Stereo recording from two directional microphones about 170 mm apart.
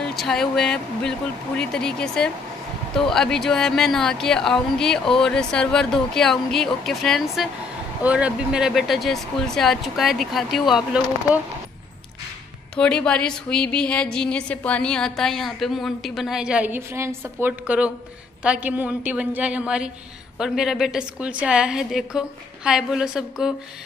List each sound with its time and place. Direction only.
0.0 s a woman's voice: centre (ahead or behind)
12.7 s a woman's voice: 5° left (ahead or behind)